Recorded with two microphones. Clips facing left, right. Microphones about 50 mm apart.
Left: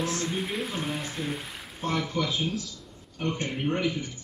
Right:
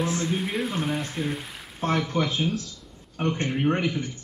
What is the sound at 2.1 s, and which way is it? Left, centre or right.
Speech, right.